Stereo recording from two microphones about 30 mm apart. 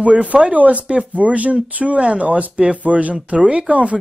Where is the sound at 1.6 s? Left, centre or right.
Right.